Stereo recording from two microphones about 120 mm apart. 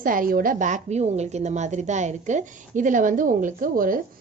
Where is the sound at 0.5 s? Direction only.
90° right.